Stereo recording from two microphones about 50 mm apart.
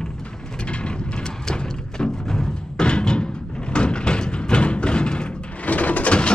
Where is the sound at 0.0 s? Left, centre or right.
Centre.